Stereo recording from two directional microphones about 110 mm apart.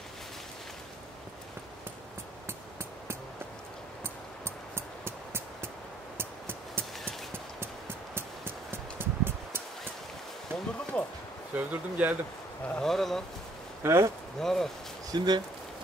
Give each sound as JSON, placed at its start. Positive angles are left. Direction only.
{"t": 4.7, "sound": "a sound", "side_deg": -20}
{"t": 6.1, "sound": "music", "side_deg": -20}
{"t": 7.6, "sound": "a sound", "side_deg": -20}
{"t": 10.9, "sound": "a sound", "side_deg": 10}
{"t": 11.5, "sound": "speech", "side_deg": -15}
{"t": 12.6, "sound": "speech", "side_deg": 5}
{"t": 13.8, "sound": "speech", "side_deg": -25}
{"t": 14.4, "sound": "speech", "side_deg": 5}
{"t": 15.0, "sound": "speech", "side_deg": -40}